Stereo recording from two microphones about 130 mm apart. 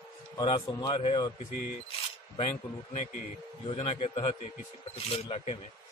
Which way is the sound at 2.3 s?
55° left (ahead or behind).